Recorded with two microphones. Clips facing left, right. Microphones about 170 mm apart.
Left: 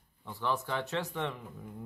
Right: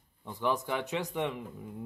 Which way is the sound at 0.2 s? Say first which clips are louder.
Right 3 dB; 15° right (ahead or behind).